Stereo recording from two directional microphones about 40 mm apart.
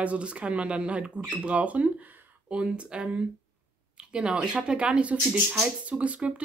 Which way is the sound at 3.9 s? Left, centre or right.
Right.